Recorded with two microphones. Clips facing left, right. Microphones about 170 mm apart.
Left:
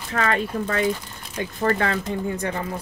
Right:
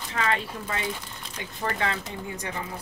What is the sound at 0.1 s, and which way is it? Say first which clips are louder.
Speech: left 5 dB; 50° left (ahead or behind).